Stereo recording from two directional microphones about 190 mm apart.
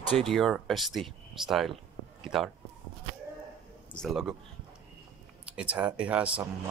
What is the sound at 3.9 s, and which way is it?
Speech, centre (ahead or behind).